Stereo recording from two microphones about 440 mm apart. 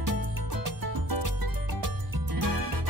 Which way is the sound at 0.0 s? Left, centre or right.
Right.